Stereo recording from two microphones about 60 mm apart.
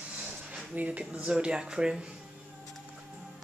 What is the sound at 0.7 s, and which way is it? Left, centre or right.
Speech, right.